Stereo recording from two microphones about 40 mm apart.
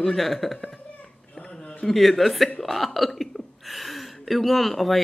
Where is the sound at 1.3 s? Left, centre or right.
Left.